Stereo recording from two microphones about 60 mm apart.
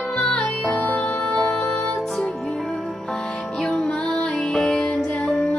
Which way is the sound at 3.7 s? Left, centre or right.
Centre.